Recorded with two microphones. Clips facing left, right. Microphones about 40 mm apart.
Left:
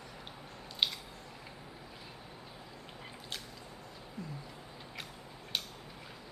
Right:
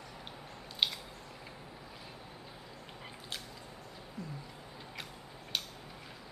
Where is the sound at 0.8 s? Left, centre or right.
Centre.